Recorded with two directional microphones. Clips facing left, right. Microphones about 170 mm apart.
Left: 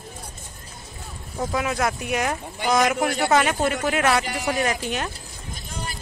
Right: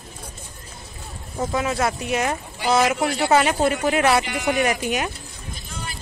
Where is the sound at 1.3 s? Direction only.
Centre (ahead or behind).